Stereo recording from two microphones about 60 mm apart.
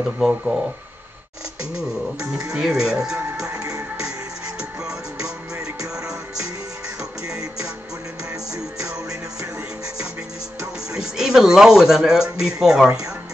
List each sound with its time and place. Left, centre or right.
0.3 s speech: centre
2.1 s speech: right
2.5 s speech: centre
3.5 s music: right
4.6 s music: centre
5.6 s music: right
8.3 s music: right
8.7 s music: centre
10.9 s speech: centre